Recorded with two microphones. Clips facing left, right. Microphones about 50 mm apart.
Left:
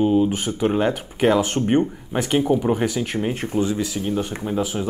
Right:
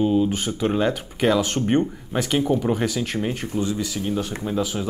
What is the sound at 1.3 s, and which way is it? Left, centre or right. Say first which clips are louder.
Speech: left 2 dB; left.